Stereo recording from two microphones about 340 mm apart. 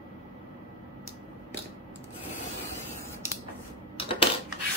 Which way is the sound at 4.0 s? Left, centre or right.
Centre.